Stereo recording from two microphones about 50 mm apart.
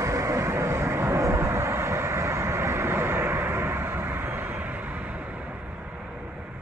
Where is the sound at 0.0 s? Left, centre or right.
Right.